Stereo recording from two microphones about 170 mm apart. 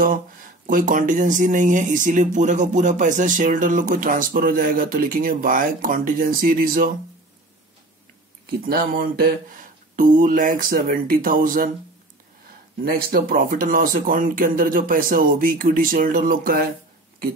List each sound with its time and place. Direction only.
0.0 s speech: 55° right (ahead or behind)
8.6 s speech: 60° right (ahead or behind)
12.8 s speech: 60° right (ahead or behind)